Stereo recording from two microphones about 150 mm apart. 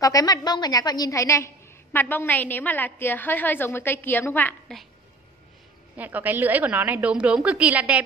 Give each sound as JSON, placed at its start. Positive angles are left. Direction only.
{"t": 0.0, "sound": "a woman's voice", "side_deg": 25}
{"t": 5.9, "sound": "a woman's voice", "side_deg": -10}